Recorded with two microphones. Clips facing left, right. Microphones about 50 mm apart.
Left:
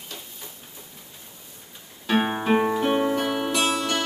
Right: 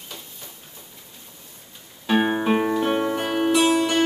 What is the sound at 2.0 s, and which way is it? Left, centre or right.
Music, centre.